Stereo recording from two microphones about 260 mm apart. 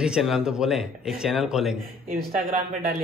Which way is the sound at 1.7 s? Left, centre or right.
Right.